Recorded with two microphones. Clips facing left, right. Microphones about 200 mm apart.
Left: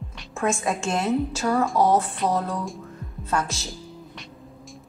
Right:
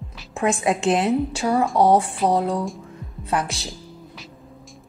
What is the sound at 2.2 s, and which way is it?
Speech, 30° right (ahead or behind).